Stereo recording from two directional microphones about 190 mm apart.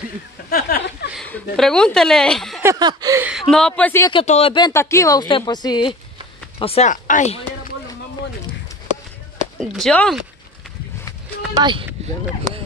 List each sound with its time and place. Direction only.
0.5 s a sound: 50° left (ahead or behind)
1.1 s speech: 5° left (ahead or behind)
2.6 s chuckle: 20° right (ahead or behind)
3.3 s a woman's voice: centre (ahead or behind)
4.1 s speech: 30° left (ahead or behind)
6.6 s speech: 35° left (ahead or behind)
9.6 s a woman's voice: 5° left (ahead or behind)
11.5 s speech: 25° right (ahead or behind)